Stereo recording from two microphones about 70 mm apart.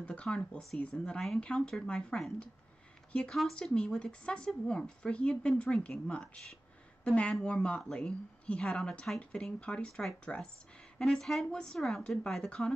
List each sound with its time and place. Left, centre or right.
0.0 s a woman's voice: centre